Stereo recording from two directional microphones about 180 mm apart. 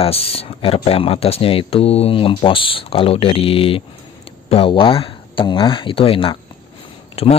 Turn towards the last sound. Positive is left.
turn(degrees=35)  # may be behind; listen again after turning